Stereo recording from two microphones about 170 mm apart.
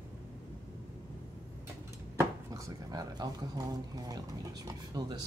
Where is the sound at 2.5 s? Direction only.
20° right (ahead or behind).